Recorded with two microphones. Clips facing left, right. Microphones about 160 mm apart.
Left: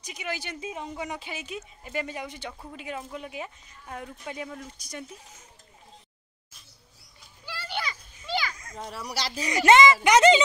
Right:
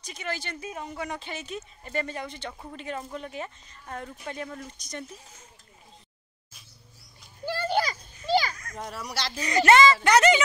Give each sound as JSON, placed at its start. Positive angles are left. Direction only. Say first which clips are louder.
{"t": 0.0, "sound": "speech", "louder": "even", "side_deg": 15}
{"t": 7.4, "sound": "children playing", "louder": "right 8 dB", "side_deg": -45}
{"t": 8.7, "sound": "speech", "louder": "left 2 dB", "side_deg": 5}